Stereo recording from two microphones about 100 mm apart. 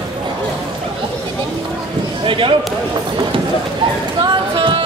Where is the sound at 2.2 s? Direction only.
60° right (ahead or behind).